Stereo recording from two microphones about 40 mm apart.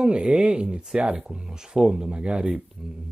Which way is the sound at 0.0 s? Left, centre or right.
Right.